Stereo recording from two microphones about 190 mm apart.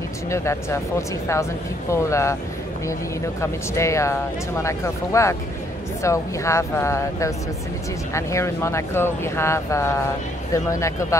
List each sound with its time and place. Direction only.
0.3 s speech: 15° left (ahead or behind)